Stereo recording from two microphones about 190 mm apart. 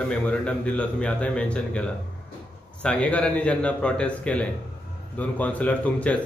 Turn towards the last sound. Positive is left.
turn(degrees=5)  # may be behind; listen again after turning